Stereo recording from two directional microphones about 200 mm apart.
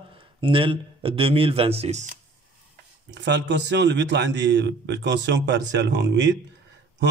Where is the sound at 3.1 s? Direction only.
60° right (ahead or behind).